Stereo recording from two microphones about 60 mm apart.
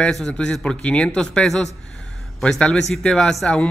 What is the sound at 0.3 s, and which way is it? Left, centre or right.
Speech, centre.